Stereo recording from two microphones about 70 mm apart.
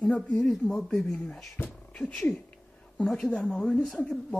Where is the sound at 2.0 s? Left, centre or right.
Centre.